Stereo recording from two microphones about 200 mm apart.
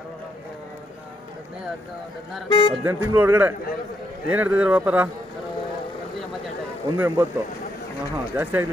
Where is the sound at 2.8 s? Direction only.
10° right (ahead or behind).